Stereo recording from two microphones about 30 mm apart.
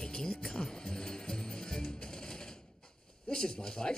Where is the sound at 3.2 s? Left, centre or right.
Left.